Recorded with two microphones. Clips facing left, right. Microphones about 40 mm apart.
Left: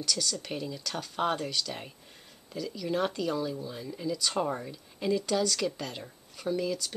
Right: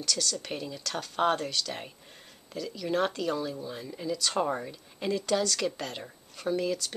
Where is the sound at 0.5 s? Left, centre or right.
Centre.